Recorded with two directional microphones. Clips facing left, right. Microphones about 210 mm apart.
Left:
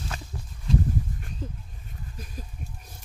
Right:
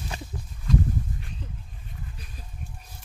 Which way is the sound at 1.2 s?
45° left (ahead or behind).